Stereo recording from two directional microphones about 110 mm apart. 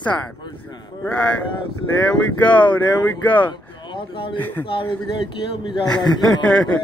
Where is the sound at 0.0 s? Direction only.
10° left (ahead or behind).